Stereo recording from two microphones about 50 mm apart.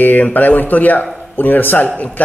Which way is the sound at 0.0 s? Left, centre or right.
Left.